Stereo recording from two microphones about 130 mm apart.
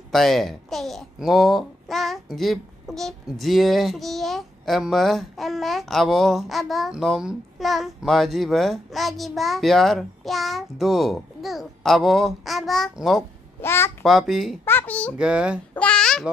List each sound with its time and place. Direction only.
0.1 s a child's voice: centre (ahead or behind)
13.6 s a child's voice: 20° left (ahead or behind)
14.0 s a child's voice: centre (ahead or behind)
14.6 s a child's voice: 15° left (ahead or behind)
15.1 s speech: 5° right (ahead or behind)
15.7 s babbling: 10° left (ahead or behind)